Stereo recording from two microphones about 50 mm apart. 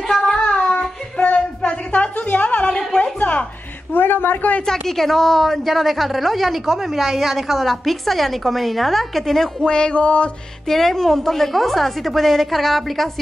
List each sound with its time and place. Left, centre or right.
0.1 s child singing: centre
1.6 s a sound: left
3.9 s speech: left
4.6 s a woman's voice: centre
9.7 s a sound: centre
10.7 s a woman's voice: centre